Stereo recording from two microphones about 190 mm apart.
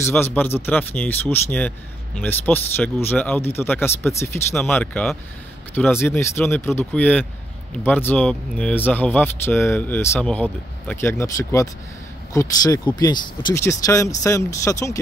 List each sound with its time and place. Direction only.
0.0 s speech: 10° left (ahead or behind)